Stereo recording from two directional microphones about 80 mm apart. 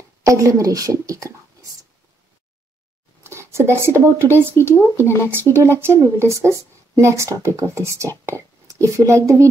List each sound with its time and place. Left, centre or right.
0.2 s speech: right
3.3 s speech: right
4.6 s speech: left
5.3 s speech: right